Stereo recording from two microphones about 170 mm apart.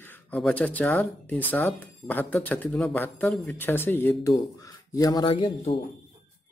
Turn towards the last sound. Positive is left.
turn(degrees=35)  # may be behind; listen again after turning